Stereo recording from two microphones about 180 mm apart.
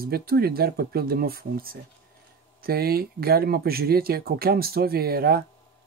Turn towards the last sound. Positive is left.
turn(degrees=-55)  # may be behind; listen again after turning